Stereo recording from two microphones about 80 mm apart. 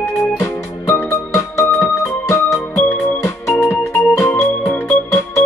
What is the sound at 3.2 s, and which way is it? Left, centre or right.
Music, left.